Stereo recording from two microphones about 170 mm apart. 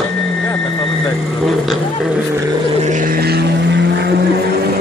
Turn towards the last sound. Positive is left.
turn(degrees=-70)  # may be behind; listen again after turning